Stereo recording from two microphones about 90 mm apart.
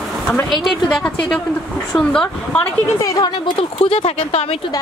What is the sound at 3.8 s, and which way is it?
Speech, 90° left.